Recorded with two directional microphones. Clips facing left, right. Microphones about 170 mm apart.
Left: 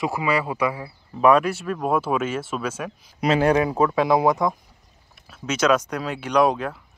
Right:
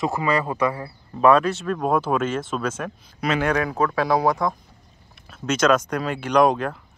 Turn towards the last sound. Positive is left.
turn(degrees=5)  # may be behind; listen again after turning